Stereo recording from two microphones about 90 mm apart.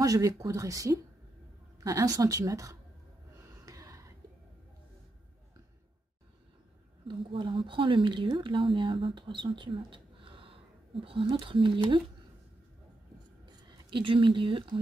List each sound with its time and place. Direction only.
0.0 s a woman's voice: 40° right (ahead or behind)
3.4 s gasp: 40° right (ahead or behind)
7.1 s speech: 65° right (ahead or behind); by 11.2 s 85° right
11.4 s speech: 70° right (ahead or behind)
13.7 s speech: 65° right (ahead or behind)